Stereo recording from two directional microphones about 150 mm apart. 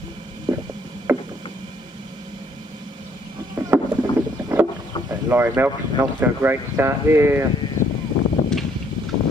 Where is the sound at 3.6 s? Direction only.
25° right (ahead or behind).